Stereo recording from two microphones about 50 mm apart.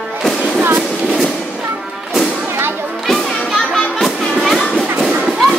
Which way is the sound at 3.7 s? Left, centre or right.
Centre.